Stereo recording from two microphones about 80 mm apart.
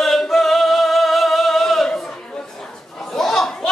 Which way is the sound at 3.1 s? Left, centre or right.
Centre.